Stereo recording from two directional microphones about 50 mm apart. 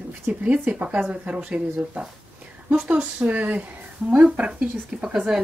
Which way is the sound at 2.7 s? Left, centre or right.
Right.